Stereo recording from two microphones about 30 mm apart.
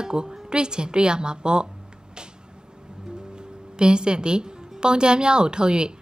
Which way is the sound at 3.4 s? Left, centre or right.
Right.